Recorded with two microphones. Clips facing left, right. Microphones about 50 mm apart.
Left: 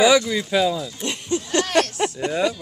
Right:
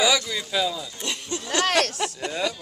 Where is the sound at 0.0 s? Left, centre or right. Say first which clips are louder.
Left 6 dB; centre.